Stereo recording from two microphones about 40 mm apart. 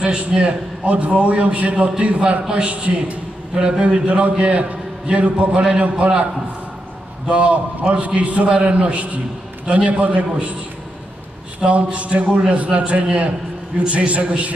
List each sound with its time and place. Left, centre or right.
0.0 s a man's voice: right
7.2 s a man's voice: right
11.6 s a man's voice: right